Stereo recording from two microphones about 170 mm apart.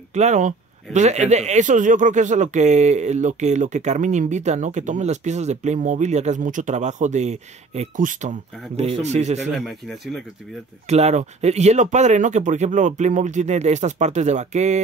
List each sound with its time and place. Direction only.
0.1 s a man's voice: 45° right (ahead or behind)
9.4 s speech: centre (ahead or behind)
10.9 s a man's voice: 40° right (ahead or behind)